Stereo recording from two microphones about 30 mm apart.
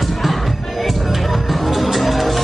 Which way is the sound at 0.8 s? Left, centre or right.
Centre.